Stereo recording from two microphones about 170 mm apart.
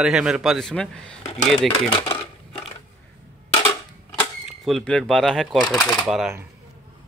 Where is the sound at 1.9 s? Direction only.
30° left (ahead or behind).